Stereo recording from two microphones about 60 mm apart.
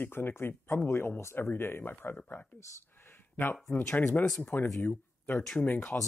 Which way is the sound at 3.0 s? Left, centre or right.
Left.